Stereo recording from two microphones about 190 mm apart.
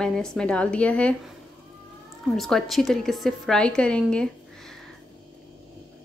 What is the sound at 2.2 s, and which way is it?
A woman's voice, centre (ahead or behind).